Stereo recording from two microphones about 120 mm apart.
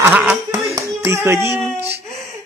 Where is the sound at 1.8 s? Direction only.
20° right (ahead or behind).